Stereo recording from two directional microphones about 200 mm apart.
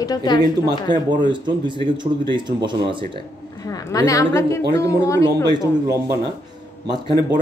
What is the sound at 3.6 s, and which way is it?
A woman's voice, 20° left (ahead or behind).